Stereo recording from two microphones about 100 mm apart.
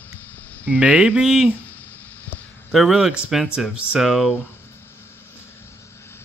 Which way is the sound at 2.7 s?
5° right (ahead or behind).